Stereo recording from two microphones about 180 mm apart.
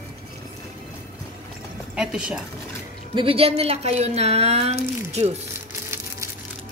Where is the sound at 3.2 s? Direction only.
30° right (ahead or behind).